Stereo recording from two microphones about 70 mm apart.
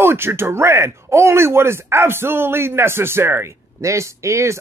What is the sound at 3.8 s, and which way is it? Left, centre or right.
Speech, right.